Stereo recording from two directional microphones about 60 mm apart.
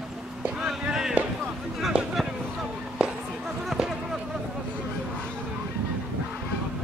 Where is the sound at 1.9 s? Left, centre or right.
Centre.